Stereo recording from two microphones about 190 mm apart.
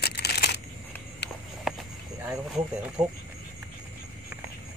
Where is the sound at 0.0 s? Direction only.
60° left (ahead or behind).